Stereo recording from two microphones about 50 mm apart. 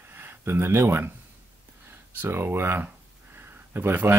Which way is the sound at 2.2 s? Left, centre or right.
Right.